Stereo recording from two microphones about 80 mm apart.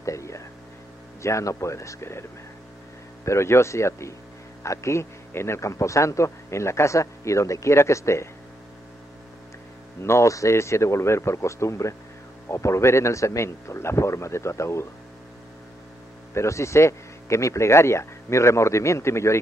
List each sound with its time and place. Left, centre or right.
0.0 s a sound: left
1.2 s a man's voice: left
3.3 s a man's voice: left
10.0 s a man's voice: left
16.3 s a man's voice: left